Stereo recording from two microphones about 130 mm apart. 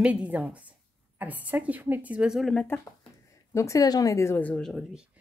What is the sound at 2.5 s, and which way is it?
Speech, 10° left (ahead or behind).